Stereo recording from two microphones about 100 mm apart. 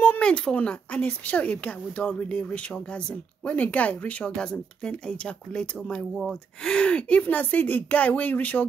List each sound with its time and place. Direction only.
0.0 s speech: 15° left (ahead or behind)